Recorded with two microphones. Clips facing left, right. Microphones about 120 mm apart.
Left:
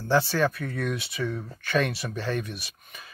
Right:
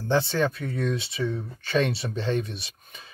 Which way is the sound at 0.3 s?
25° right (ahead or behind).